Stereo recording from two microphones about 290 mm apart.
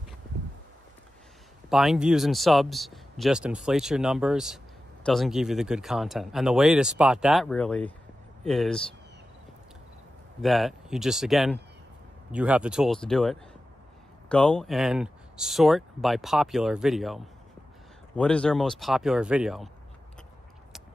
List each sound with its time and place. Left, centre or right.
1.7 s speech: centre
10.4 s speech: centre